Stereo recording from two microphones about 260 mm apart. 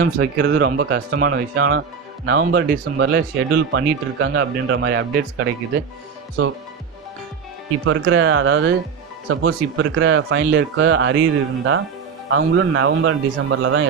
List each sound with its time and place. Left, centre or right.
0.0 s speech: right
7.8 s speech: right